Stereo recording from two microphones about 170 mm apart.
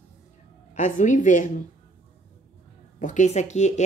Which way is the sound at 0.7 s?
45° left (ahead or behind).